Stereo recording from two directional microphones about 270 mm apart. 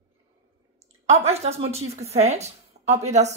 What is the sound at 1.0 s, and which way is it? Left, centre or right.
A woman's voice, right.